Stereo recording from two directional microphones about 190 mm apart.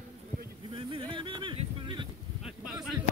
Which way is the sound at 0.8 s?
25° right (ahead or behind).